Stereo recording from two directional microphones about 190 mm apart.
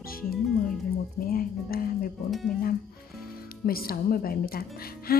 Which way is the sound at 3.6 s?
50° left (ahead or behind).